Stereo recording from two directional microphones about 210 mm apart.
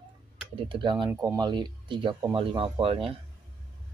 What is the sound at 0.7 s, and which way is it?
Speech, 20° right (ahead or behind).